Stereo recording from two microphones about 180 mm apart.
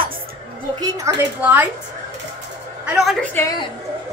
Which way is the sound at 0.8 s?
20° right (ahead or behind).